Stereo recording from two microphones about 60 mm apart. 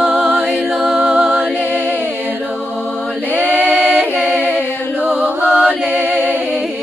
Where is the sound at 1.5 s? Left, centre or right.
Right.